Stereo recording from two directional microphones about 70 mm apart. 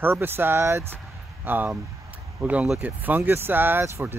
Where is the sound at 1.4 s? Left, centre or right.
Right.